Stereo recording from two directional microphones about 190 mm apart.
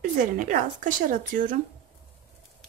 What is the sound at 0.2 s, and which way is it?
A woman's voice, 45° right (ahead or behind).